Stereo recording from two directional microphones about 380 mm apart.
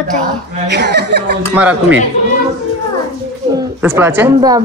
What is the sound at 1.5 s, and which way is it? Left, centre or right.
Speech, centre.